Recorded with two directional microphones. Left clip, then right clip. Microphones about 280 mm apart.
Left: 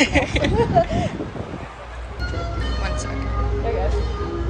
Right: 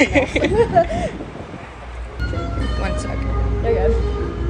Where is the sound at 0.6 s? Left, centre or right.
Right.